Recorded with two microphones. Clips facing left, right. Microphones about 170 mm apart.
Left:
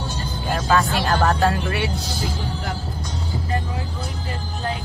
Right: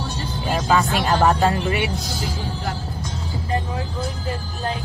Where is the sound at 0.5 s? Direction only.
15° right (ahead or behind).